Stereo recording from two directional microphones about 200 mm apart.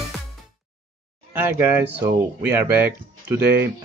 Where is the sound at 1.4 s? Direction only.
10° right (ahead or behind).